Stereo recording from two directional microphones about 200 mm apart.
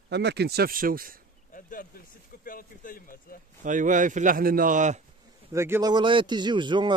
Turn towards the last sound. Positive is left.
turn(degrees=-25)  # may be behind; listen again after turning